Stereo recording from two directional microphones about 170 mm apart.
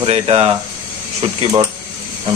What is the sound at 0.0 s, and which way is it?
Speech, 35° right (ahead or behind).